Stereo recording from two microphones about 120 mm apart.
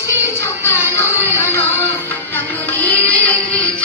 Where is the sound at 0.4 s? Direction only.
25° left (ahead or behind).